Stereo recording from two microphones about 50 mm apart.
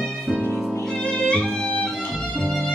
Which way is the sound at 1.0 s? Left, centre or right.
Centre.